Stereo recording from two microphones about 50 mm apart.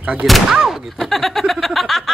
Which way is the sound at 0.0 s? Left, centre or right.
Right.